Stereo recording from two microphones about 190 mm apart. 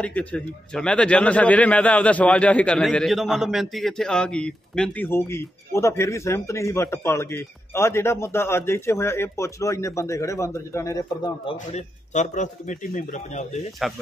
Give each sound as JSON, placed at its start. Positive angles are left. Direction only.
{"t": 0.0, "sound": "a man's voice", "side_deg": 5}
{"t": 11.5, "sound": "a man's voice", "side_deg": 40}